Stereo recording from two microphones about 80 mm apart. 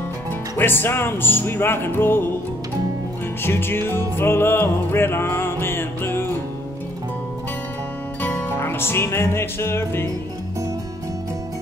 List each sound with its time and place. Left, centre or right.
0.6 s music: left
3.4 s music: left
8.2 s music: left